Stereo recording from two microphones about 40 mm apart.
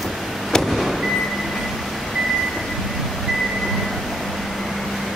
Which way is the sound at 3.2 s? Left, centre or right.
Centre.